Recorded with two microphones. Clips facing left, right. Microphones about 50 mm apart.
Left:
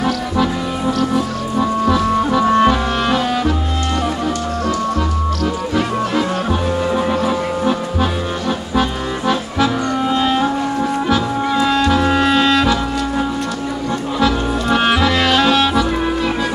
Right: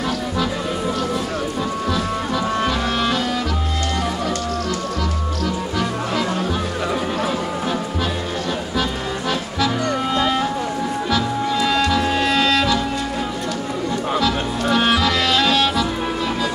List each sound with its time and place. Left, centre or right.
1.6 s music: left
11.5 s music: left
14.2 s music: left